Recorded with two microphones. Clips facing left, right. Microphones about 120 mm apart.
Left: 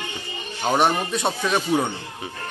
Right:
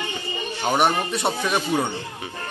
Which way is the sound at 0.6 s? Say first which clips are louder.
Left 1 dB; 10° right (ahead or behind).